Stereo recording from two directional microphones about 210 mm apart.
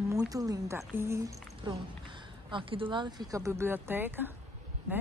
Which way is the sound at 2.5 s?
25° right (ahead or behind).